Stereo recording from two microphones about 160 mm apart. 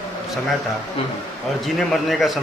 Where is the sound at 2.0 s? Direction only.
Centre (ahead or behind).